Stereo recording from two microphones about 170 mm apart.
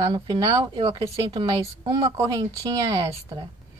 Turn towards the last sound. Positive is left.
turn(degrees=-30)  # may be behind; listen again after turning